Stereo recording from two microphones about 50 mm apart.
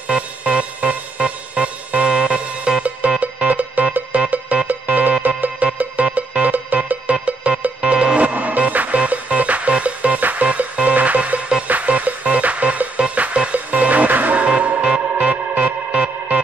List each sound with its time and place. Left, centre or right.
0.1 s music: right
6.0 s music: right
14.8 s music: centre
15.2 s music: right